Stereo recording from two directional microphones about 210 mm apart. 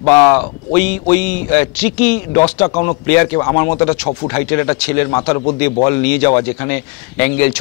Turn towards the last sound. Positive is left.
turn(degrees=10)  # may be behind; listen again after turning